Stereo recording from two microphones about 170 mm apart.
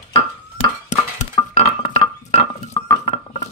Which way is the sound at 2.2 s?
35° left (ahead or behind).